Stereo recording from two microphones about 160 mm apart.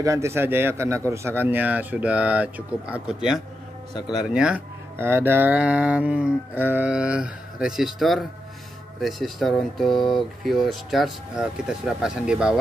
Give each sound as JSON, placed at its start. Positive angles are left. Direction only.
{"t": 0.0, "sound": "speech", "side_deg": -20}